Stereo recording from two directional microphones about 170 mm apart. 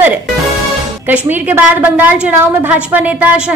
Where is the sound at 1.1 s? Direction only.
10° right (ahead or behind).